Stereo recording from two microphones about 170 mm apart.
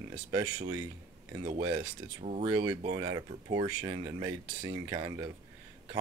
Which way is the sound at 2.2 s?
40° right (ahead or behind).